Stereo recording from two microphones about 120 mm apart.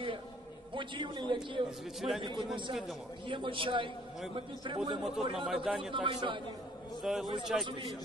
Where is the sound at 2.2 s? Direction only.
40° right (ahead or behind).